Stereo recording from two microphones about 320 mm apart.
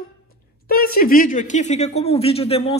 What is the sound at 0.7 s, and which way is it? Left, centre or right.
Speech, left.